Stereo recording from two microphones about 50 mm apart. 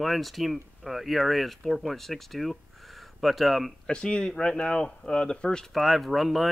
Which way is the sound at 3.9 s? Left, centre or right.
Centre.